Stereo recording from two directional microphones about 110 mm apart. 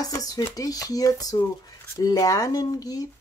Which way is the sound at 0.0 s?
30° left (ahead or behind).